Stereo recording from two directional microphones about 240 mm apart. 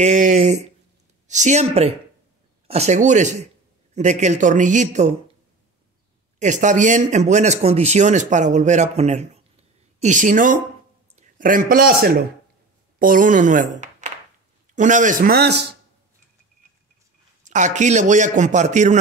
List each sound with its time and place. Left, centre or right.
0.0 s speech: right
6.4 s a man's voice: right
17.5 s a man's voice: right